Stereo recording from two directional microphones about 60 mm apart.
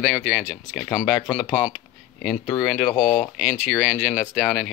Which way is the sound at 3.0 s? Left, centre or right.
Centre.